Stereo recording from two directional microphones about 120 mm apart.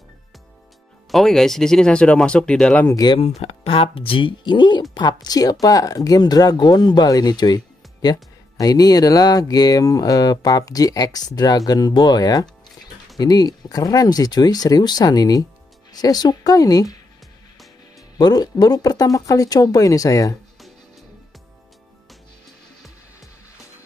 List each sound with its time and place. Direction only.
1.1 s speech: centre (ahead or behind)
3.2 s speech: 55° left (ahead or behind); by 17.0 s 30° left (ahead or behind)
18.1 s speech: 35° left (ahead or behind)